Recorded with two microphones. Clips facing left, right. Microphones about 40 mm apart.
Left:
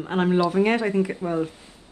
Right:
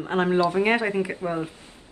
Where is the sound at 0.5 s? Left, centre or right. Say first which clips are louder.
Left 1 dB; centre.